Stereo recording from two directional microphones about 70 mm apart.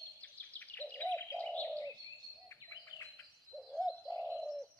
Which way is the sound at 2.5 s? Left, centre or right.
Left.